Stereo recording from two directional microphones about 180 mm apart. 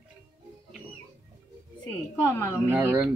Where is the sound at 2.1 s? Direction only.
15° left (ahead or behind).